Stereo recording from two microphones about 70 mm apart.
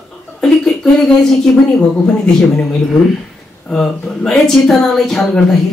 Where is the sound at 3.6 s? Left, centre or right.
Centre.